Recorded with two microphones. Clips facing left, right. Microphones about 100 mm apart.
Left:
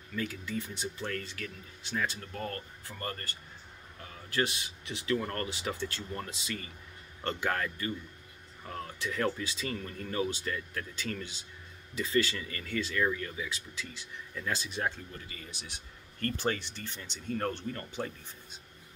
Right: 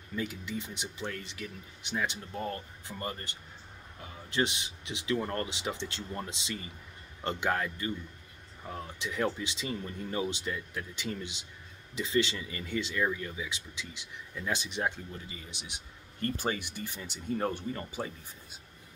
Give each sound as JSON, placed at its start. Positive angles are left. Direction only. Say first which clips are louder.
{"t": 0.1, "sound": "speech", "louder": "even", "side_deg": -20}